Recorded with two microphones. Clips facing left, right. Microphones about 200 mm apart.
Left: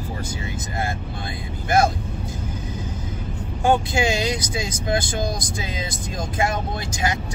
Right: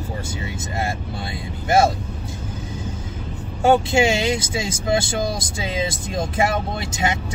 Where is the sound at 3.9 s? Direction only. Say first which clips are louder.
Right 4 dB; 25° right (ahead or behind).